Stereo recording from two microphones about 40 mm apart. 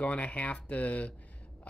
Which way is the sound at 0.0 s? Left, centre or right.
Left.